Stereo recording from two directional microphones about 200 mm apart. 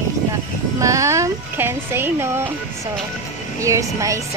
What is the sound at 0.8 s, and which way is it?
Speech, 15° right (ahead or behind).